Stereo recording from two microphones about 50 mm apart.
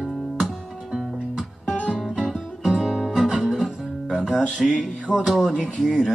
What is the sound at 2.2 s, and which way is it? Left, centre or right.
Guitar, centre.